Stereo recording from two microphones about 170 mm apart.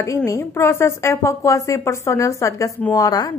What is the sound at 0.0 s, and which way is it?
A woman's voice, 15° left (ahead or behind).